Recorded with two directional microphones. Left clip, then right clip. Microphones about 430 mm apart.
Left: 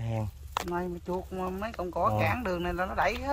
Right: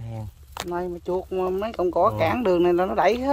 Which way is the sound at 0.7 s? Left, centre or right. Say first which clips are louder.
Right 10 dB; centre.